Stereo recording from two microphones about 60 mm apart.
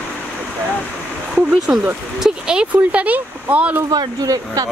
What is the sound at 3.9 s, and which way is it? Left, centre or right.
Speech, right.